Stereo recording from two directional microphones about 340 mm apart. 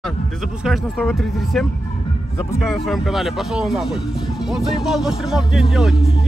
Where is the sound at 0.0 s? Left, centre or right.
Centre.